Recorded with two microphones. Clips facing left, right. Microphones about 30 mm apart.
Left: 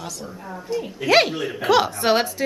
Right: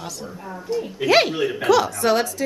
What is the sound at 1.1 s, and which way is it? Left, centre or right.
Speech, centre.